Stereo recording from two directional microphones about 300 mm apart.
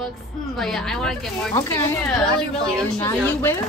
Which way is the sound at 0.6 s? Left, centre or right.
Centre.